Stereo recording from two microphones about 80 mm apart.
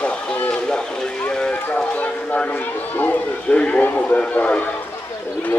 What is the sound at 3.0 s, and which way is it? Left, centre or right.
A man's voice, centre.